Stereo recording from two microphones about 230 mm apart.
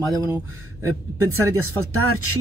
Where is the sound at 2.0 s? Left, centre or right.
Right.